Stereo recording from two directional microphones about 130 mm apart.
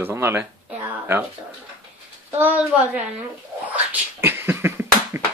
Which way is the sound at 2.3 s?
10° right (ahead or behind).